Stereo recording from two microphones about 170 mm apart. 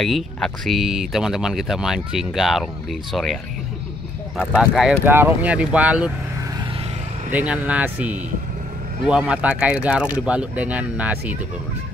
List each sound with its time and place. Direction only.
0.0 s speech: centre (ahead or behind)
4.6 s speech: centre (ahead or behind)
5.0 s speech: 10° right (ahead or behind)
7.2 s speech: 10° right (ahead or behind)